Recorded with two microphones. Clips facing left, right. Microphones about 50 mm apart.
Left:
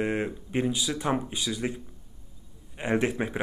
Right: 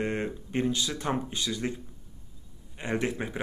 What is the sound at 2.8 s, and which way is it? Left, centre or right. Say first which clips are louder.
Speech: left 4 dB; centre.